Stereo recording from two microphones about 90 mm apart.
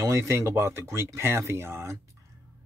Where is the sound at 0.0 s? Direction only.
30° right (ahead or behind).